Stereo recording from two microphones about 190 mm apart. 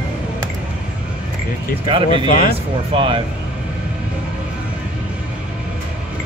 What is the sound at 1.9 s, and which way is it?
Speech, 25° right (ahead or behind).